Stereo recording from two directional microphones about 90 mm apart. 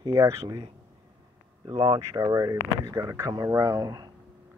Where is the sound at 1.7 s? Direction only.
90° right.